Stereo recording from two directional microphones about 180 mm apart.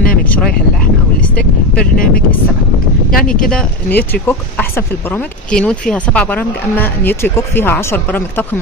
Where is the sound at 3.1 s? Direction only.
50° left (ahead or behind).